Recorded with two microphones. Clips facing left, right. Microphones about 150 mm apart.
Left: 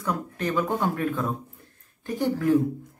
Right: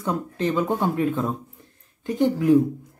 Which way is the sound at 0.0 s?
25° right (ahead or behind).